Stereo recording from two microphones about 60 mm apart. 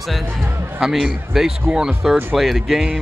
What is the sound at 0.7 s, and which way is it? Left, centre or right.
Speech, centre.